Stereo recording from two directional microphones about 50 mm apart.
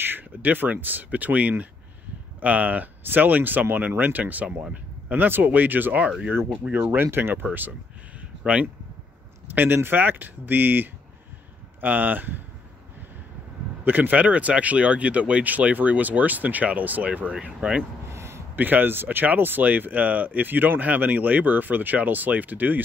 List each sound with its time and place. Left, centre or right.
0.0 s speech: right
7.0 s speech: right
8.4 s speech: right
9.6 s speech: right
13.8 s speech: right
18.1 s a sound: right
18.6 s speech: right